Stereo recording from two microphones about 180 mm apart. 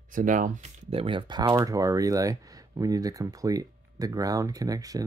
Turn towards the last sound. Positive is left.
turn(degrees=-20)  # may be behind; listen again after turning